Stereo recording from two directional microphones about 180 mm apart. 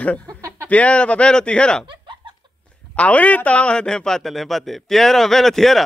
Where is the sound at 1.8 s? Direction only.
25° right (ahead or behind).